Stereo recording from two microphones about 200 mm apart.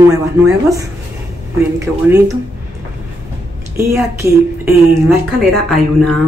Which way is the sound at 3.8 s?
15° right (ahead or behind).